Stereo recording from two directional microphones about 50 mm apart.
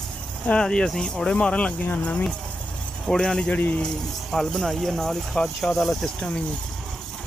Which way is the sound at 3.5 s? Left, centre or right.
Left.